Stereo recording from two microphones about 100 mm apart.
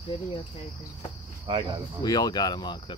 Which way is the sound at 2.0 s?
40° left (ahead or behind).